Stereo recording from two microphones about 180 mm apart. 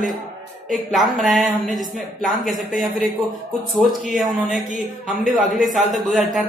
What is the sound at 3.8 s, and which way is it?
Speech, centre (ahead or behind).